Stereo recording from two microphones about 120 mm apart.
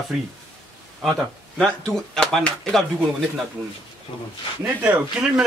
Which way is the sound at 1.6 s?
5° left (ahead or behind).